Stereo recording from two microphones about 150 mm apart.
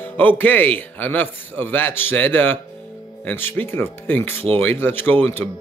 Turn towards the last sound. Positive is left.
turn(degrees=15)  # may be behind; listen again after turning